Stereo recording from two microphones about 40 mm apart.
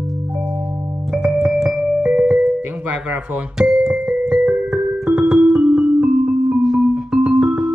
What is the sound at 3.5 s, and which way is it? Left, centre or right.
Speech, centre.